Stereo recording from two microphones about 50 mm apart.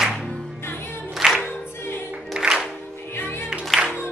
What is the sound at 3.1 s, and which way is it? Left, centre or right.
Music, left.